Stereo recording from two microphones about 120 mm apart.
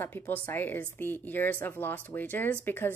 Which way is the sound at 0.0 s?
15° left (ahead or behind).